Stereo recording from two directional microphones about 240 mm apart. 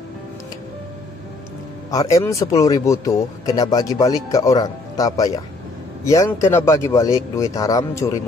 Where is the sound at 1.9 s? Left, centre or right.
Centre.